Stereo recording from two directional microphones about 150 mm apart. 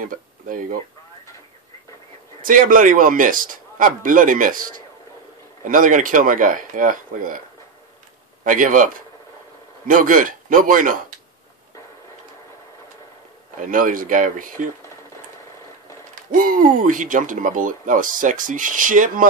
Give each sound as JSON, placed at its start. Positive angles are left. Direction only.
{"t": 0.0, "sound": "speech", "side_deg": -65}
{"t": 2.4, "sound": "speech", "side_deg": -65}
{"t": 8.5, "sound": "speech", "side_deg": -60}
{"t": 13.6, "sound": "speech", "side_deg": -65}
{"t": 16.3, "sound": "speech", "side_deg": -65}